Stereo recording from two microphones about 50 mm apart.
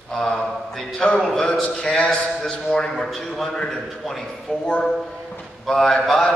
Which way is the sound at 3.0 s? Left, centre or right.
Centre.